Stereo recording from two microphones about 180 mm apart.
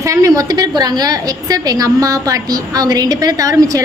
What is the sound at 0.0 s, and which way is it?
A woman's voice, 20° right (ahead or behind).